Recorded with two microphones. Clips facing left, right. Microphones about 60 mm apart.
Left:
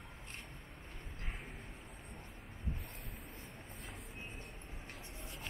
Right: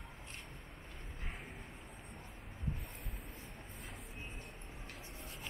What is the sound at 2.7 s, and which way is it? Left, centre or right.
Vehicle, centre.